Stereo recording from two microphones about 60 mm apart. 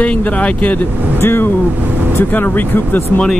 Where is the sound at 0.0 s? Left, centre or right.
Left.